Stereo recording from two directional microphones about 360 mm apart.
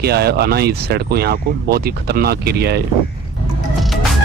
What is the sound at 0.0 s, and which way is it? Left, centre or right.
Speech, right.